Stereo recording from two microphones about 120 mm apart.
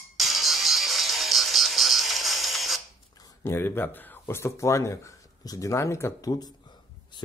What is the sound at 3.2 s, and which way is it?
Speech, 25° left (ahead or behind).